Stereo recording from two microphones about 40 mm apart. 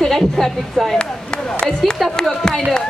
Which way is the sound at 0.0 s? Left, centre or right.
Centre.